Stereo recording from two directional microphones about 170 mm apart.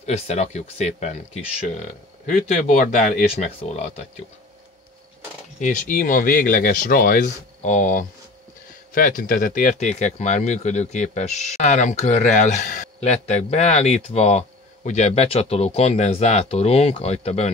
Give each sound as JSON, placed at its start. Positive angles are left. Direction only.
{"t": 0.0, "sound": "speech", "side_deg": 40}
{"t": 5.6, "sound": "speech", "side_deg": 50}